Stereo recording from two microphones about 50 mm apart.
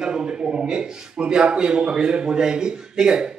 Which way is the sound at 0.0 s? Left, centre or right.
Centre.